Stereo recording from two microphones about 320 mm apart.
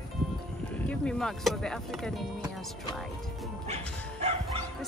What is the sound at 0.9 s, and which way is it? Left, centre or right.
Speech, centre.